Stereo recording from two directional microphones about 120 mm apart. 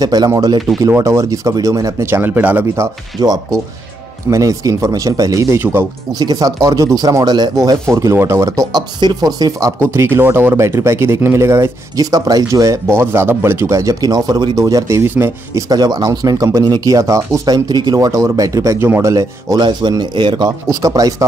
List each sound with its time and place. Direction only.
0.0 s speech: 35° right (ahead or behind)
5.6 s speech: 20° right (ahead or behind)
6.1 s speech: 30° right (ahead or behind)
7.9 s speech: 20° right (ahead or behind)
15.7 s speech: 35° right (ahead or behind)